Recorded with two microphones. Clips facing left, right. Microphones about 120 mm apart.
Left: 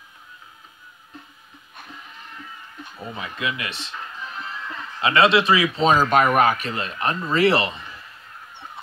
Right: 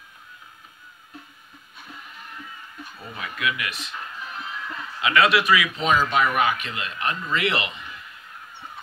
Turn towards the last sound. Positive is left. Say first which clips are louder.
# left 7 dB
turn(degrees=35)  # may be behind; listen again after turning